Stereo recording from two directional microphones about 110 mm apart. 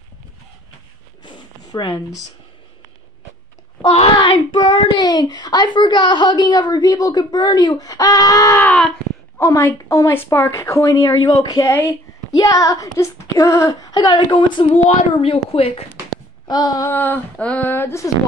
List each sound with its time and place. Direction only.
1.2 s zipper: 45° left (ahead or behind)
3.8 s a child's voice: 60° left (ahead or behind); by 8.5 s 30° left (ahead or behind)
8.5 s a sound: 10° left (ahead or behind)
9.4 s a woman's voice: 25° left (ahead or behind); by 15.8 s 65° left (ahead or behind)
16.4 s a child's voice: 40° left (ahead or behind)
16.9 s a sound: 20° left (ahead or behind)